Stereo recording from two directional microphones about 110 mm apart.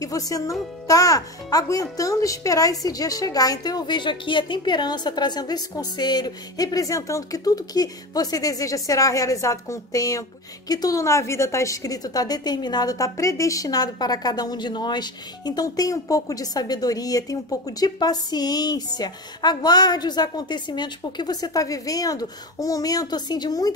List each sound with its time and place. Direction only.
0.0 s a woman's voice: 30° left (ahead or behind)